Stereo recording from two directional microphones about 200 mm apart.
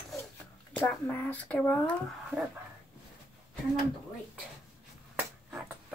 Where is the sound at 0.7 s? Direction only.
10° left (ahead or behind).